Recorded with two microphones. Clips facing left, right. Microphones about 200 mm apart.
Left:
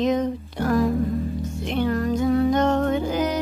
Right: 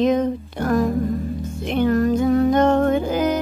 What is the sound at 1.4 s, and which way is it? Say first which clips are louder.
Music: right 3 dB; 50° right (ahead or behind).